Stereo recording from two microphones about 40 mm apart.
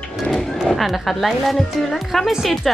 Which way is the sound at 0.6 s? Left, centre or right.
Centre.